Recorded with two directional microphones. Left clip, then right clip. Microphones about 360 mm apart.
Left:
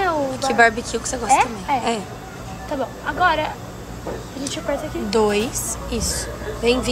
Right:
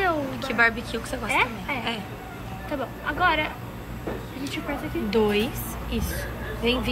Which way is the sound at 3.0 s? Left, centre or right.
Left.